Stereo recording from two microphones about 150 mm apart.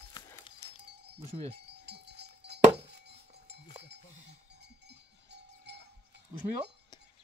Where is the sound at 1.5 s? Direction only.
90° right.